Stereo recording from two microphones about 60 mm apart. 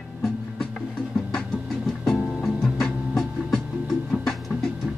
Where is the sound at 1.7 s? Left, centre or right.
Centre.